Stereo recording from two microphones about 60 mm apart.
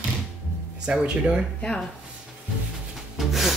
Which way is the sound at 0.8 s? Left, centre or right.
Centre.